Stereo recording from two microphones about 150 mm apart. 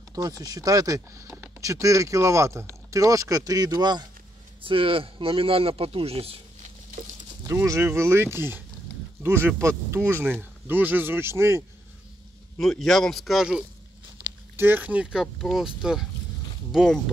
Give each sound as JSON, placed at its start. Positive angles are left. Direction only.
{"t": 0.1, "sound": "speech", "side_deg": -25}
{"t": 7.0, "sound": "speech", "side_deg": -60}
{"t": 7.4, "sound": "speech", "side_deg": -20}
{"t": 12.5, "sound": "speech", "side_deg": 5}